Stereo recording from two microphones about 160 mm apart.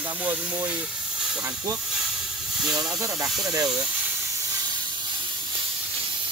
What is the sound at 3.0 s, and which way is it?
Speech, 20° right (ahead or behind).